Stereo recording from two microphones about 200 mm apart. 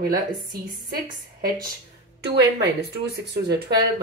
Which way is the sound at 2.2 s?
55° right (ahead or behind).